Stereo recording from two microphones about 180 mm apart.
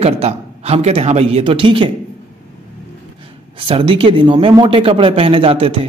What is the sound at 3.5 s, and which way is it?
A man's voice, 30° right (ahead or behind).